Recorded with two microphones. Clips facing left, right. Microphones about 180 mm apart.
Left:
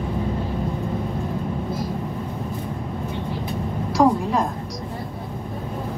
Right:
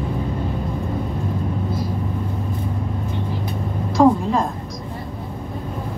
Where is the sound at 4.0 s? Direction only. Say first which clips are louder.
Right 3 dB; 5° left (ahead or behind).